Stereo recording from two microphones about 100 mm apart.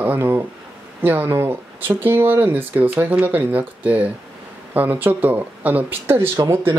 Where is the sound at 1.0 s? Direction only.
20° right (ahead or behind).